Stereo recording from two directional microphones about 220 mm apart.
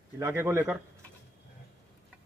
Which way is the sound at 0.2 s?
10° right (ahead or behind).